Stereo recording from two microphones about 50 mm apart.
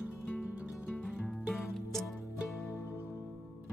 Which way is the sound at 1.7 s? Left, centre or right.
Centre.